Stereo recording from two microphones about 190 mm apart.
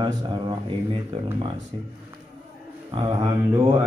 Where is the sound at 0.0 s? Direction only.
25° right (ahead or behind).